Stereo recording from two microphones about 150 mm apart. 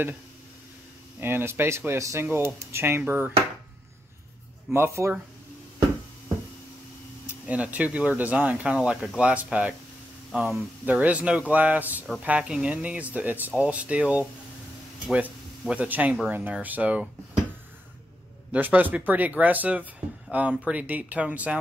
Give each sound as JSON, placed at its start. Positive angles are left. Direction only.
{"t": 1.2, "sound": "speech", "side_deg": -15}
{"t": 4.6, "sound": "speech", "side_deg": -15}
{"t": 7.4, "sound": "speech", "side_deg": -10}
{"t": 18.5, "sound": "speech", "side_deg": -10}